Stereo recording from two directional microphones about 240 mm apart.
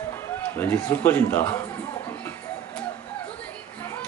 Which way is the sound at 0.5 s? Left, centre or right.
Centre.